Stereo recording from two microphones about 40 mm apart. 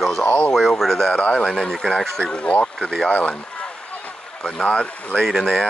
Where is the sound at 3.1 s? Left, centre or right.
Left.